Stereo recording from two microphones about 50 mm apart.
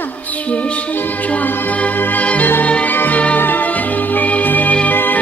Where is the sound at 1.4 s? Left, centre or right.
Left.